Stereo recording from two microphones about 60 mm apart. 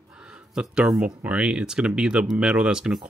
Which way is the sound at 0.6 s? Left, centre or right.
Centre.